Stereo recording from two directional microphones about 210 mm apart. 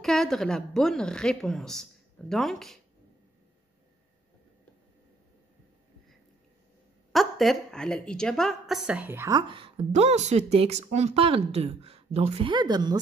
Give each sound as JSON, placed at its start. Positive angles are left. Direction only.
{"t": 0.0, "sound": "a woman's voice", "side_deg": 0}
{"t": 7.1, "sound": "a woman's voice", "side_deg": 0}